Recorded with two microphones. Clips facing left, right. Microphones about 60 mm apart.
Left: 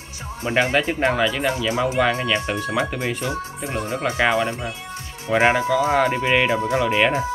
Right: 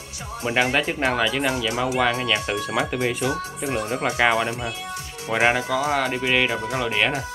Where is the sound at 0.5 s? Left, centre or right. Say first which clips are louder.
Left 2 dB; centre.